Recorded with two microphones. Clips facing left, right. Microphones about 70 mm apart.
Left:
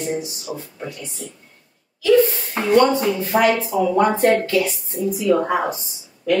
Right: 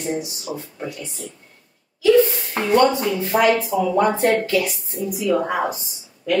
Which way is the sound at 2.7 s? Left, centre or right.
Left.